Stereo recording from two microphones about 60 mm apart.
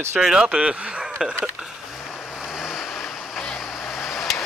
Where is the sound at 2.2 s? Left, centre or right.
Centre.